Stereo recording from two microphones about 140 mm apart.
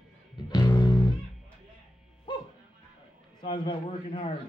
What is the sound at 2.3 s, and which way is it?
Music, 35° left (ahead or behind).